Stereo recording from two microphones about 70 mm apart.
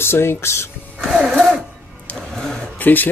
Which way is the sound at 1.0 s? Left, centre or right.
Centre.